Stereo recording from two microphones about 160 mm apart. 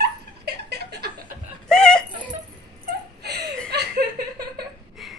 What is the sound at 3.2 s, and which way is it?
Chuckle, 85° right.